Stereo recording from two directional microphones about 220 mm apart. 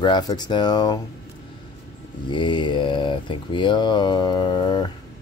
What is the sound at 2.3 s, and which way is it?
Speech, 20° left (ahead or behind).